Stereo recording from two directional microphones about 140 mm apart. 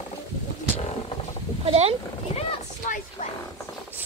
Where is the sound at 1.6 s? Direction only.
45° right (ahead or behind).